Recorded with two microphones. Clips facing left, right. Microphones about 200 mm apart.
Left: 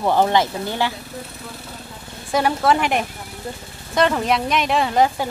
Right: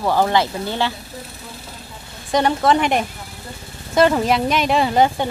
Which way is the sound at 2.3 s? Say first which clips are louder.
Right 2 dB; 5° left (ahead or behind).